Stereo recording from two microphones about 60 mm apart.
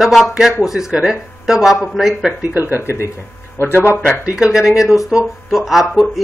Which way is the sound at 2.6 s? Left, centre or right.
Right.